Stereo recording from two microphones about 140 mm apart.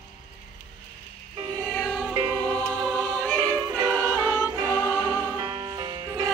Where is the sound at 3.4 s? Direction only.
20° right (ahead or behind).